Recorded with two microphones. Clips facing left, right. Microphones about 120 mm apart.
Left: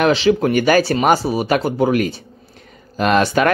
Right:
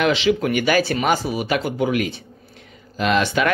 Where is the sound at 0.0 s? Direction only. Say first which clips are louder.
Left 4 dB; 40° left (ahead or behind).